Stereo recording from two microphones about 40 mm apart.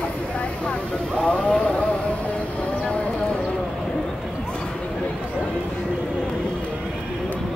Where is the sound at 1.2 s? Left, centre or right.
Left.